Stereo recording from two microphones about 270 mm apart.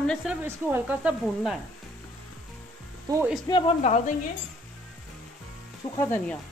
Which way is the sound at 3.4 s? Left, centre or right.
Centre.